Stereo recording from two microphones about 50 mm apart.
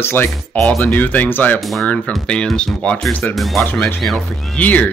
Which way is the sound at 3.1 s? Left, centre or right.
Left.